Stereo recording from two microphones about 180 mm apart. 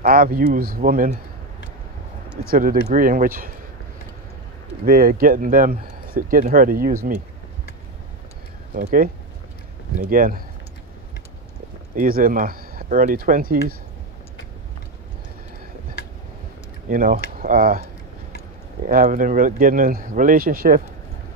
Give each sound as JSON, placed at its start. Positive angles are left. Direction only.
{"t": 0.0, "sound": "speech", "side_deg": -55}
{"t": 2.4, "sound": "speech", "side_deg": -55}
{"t": 4.8, "sound": "speech", "side_deg": -55}
{"t": 8.7, "sound": "speech", "side_deg": -50}
{"t": 11.9, "sound": "speech", "side_deg": -50}
{"t": 16.9, "sound": "speech", "side_deg": -50}
{"t": 18.9, "sound": "speech", "side_deg": -50}